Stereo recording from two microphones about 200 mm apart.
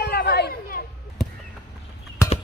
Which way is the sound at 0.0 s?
50° left (ahead or behind).